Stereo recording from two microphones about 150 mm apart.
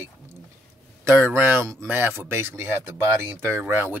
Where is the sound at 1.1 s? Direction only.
10° right (ahead or behind).